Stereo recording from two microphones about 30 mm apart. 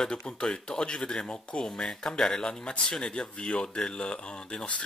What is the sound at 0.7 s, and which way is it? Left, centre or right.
Speech, left.